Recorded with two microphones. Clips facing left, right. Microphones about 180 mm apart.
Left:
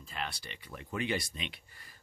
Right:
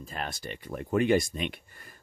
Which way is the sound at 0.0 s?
45° right (ahead or behind).